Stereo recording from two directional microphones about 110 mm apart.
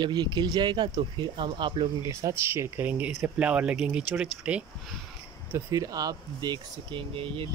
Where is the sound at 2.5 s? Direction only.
20° right (ahead or behind).